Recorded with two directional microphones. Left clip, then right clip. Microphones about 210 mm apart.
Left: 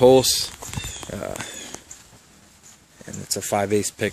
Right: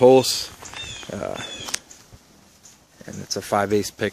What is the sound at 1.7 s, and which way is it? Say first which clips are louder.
Cat: right 10 dB; 15° left (ahead or behind).